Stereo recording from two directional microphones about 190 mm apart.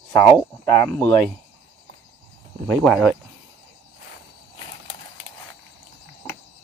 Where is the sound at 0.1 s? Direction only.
15° left (ahead or behind).